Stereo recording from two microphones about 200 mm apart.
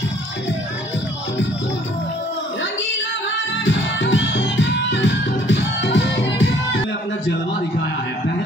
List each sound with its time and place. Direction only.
3.6 s music: 65° left (ahead or behind)